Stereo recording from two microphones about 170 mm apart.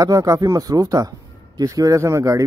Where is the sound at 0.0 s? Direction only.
20° right (ahead or behind).